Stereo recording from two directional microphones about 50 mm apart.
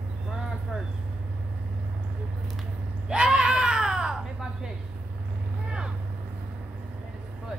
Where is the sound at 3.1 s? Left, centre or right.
Centre.